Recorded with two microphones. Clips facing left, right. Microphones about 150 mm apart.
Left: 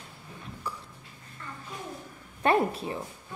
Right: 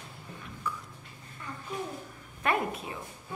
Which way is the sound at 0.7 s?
35° left (ahead or behind).